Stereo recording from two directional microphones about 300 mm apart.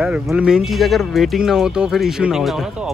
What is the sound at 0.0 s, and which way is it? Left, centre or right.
Speech, centre.